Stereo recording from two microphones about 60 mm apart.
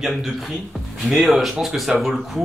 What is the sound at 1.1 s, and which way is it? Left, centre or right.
Speech, centre.